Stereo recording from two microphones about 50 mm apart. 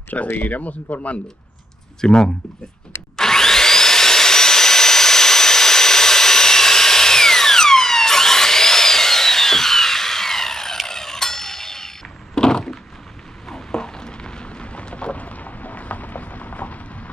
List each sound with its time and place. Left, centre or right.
0.1 s speech: left
2.0 s speech: centre
3.2 s vacuum cleaner: centre
10.9 s a sound: centre; by 16.8 s left